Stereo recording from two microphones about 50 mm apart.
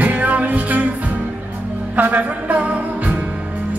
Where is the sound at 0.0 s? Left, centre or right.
Right.